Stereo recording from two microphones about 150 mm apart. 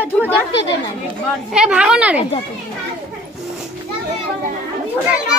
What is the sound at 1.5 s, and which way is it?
Speech, 5° right (ahead or behind).